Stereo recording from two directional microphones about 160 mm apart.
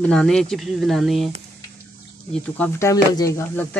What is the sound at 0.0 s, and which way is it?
Speech, 5° left (ahead or behind).